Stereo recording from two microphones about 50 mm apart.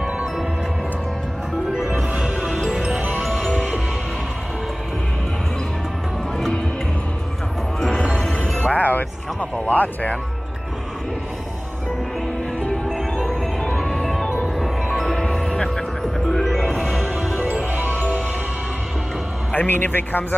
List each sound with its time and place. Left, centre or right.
1.7 s music: centre
2.1 s music: centre
3.2 s music: centre
6.3 s music: centre
8.6 s music: left
12.8 s music: centre
13.3 s music: centre
17.5 s music: right
19.5 s speech: left